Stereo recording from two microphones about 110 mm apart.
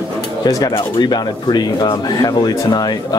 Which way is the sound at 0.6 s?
45° left (ahead or behind).